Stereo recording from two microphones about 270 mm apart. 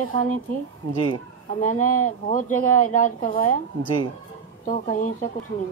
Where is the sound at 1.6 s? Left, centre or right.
Left.